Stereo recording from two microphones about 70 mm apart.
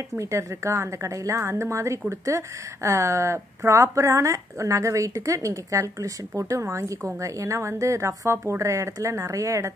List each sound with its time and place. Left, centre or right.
0.2 s a woman's voice: right